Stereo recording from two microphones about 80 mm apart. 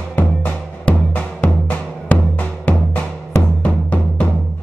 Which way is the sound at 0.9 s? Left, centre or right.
Centre.